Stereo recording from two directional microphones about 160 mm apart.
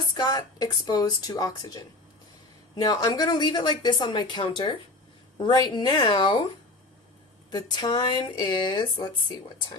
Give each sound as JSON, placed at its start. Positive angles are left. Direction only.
{"t": 0.1, "sound": "speech", "side_deg": 25}
{"t": 7.5, "sound": "speech", "side_deg": 25}